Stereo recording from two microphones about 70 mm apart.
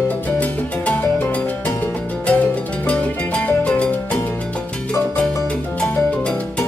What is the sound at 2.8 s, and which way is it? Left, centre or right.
Music, centre.